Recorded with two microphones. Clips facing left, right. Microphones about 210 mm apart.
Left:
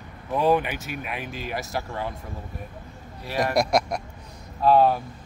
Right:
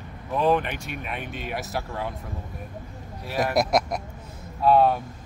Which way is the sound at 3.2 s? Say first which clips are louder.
Even; centre (ahead or behind).